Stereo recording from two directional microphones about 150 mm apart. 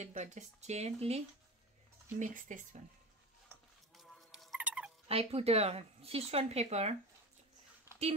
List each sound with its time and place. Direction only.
0.0 s speech: 50° right (ahead or behind)
2.1 s speech: 55° right (ahead or behind)
3.4 s a sound: centre (ahead or behind)
5.0 s speech: 40° right (ahead or behind)